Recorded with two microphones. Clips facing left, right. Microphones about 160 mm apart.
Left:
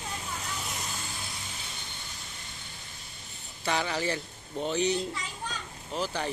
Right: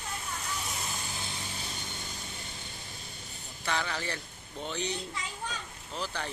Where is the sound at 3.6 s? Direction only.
15° left (ahead or behind).